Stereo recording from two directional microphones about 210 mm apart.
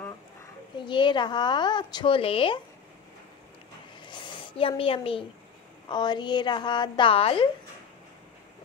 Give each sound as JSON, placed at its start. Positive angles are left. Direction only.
{"t": 0.7, "sound": "a woman's voice", "side_deg": 20}
{"t": 4.0, "sound": "a sound", "side_deg": 25}
{"t": 5.9, "sound": "a woman's voice", "side_deg": 20}